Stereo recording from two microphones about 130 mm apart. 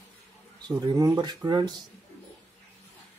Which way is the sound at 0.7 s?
30° right (ahead or behind).